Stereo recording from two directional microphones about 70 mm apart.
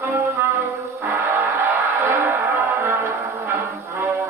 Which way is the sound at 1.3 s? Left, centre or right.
Right.